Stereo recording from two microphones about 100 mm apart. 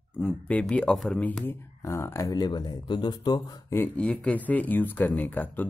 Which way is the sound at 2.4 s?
45° left (ahead or behind).